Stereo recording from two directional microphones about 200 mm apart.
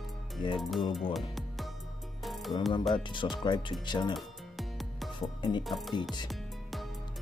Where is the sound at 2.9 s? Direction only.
25° left (ahead or behind).